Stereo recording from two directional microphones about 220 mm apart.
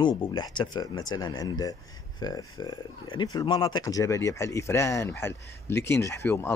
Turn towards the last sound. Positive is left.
turn(degrees=10)  # may be behind; listen again after turning